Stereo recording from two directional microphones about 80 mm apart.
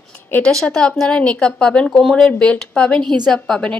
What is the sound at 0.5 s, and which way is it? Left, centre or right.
Speech, centre.